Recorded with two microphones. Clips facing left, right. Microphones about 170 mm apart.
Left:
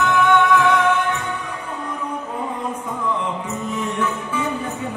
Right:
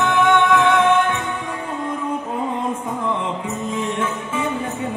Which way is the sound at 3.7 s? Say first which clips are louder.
Even; 25° right (ahead or behind).